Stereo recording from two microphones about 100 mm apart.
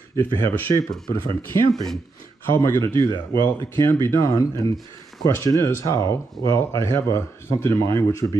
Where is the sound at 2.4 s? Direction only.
25° left (ahead or behind).